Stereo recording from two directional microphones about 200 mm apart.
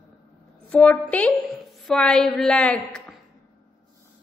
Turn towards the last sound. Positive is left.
turn(degrees=5)  # may be behind; listen again after turning